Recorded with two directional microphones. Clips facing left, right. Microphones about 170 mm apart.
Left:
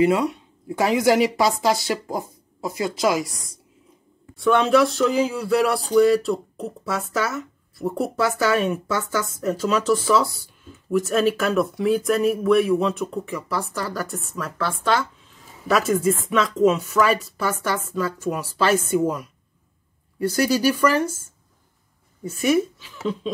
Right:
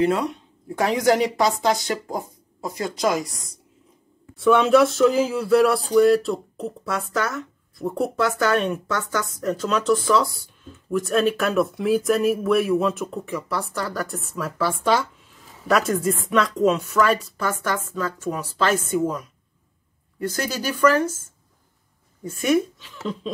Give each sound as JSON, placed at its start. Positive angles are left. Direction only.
{"t": 0.0, "sound": "speech", "side_deg": 5}
{"t": 4.4, "sound": "speech", "side_deg": 0}
{"t": 15.7, "sound": "speech", "side_deg": 0}
{"t": 22.2, "sound": "speech", "side_deg": 5}